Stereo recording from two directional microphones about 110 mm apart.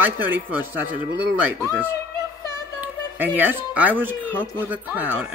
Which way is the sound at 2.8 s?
15° right (ahead or behind).